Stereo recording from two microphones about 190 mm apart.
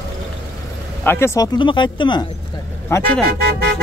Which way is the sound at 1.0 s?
15° left (ahead or behind).